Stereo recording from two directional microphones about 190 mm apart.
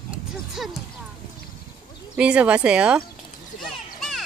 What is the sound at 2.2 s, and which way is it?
Speech, 5° right (ahead or behind).